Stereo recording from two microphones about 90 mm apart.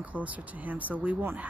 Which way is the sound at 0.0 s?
15° right (ahead or behind).